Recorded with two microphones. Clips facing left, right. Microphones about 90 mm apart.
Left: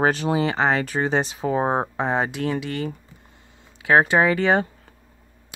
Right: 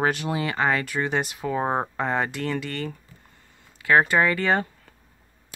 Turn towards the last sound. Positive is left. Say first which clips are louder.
# left 3 dB
turn(degrees=20)  # may be behind; listen again after turning